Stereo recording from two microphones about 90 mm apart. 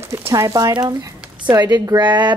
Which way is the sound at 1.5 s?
50° right (ahead or behind).